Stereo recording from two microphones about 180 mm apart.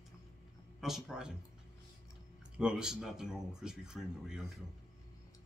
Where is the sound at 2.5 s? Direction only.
5° right (ahead or behind).